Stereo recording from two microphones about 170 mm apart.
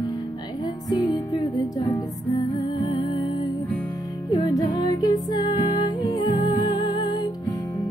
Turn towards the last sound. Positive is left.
turn(degrees=25)  # may be behind; listen again after turning